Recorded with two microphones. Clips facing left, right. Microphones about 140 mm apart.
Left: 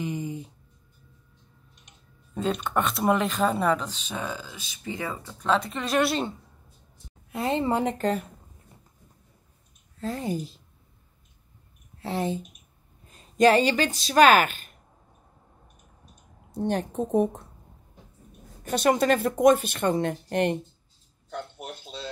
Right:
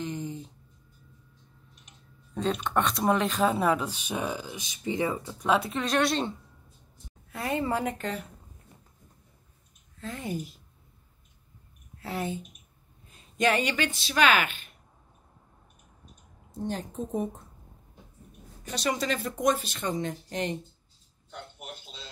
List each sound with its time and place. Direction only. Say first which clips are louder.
0.0 s a sound: left 3 dB; 10° left (ahead or behind)
1.9 s speech: right 1 dB; centre (ahead or behind)
3.8 s speech: right 2 dB; 15° right (ahead or behind)
5.7 s speech: left 1 dB; centre (ahead or behind)
7.2 s a woman's voice: left 4 dB; 25° left (ahead or behind)
9.9 s speech: left 5 dB; 35° left (ahead or behind)
12.0 s speech: left 4 dB; 30° left (ahead or behind)
16.5 s a woman's voice: left 6 dB; 65° left (ahead or behind)
18.6 s speech: left 8 dB; 55° left (ahead or behind)